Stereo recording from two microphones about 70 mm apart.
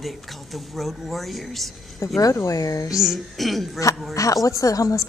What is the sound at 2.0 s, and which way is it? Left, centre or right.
Speech, left.